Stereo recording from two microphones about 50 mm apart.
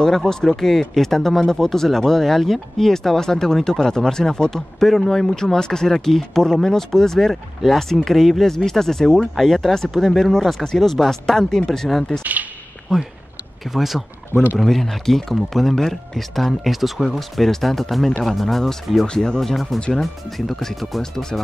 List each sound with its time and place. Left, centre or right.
0.0 s speech: centre
12.2 s speech: right
12.9 s speech: centre